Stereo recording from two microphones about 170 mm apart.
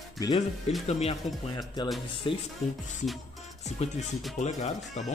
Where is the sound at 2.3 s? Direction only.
30° left (ahead or behind).